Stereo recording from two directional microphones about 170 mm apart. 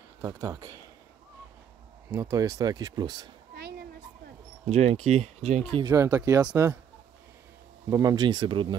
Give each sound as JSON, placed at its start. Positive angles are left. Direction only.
{"t": 0.2, "sound": "speech", "side_deg": -20}
{"t": 2.0, "sound": "speech", "side_deg": -15}
{"t": 3.5, "sound": "a sound", "side_deg": -70}
{"t": 4.6, "sound": "speech", "side_deg": -40}
{"t": 5.9, "sound": "speech", "side_deg": -20}
{"t": 7.9, "sound": "speech", "side_deg": -20}